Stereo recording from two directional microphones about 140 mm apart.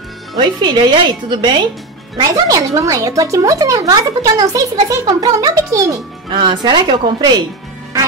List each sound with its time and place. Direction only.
0.4 s speech: 30° right (ahead or behind)